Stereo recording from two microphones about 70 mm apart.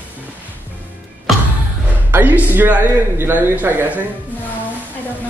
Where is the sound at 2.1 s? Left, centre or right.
Right.